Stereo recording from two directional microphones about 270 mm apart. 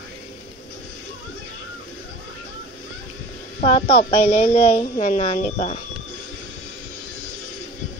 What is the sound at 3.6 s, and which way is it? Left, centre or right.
A woman's voice, left.